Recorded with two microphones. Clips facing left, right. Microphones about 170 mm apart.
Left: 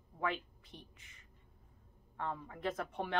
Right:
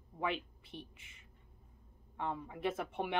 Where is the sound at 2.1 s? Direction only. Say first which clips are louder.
Right 2 dB; 15° right (ahead or behind).